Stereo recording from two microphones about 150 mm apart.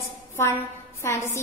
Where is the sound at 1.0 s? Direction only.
20° left (ahead or behind).